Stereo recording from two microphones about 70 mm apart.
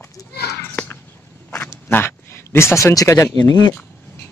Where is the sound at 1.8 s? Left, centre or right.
Left.